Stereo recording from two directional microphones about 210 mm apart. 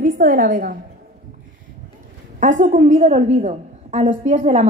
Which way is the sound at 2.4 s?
35° right (ahead or behind).